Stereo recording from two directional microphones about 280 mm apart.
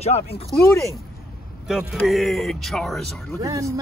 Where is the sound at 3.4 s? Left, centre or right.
Centre.